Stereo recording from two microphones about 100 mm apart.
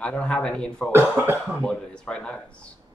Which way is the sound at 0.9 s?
20° right (ahead or behind).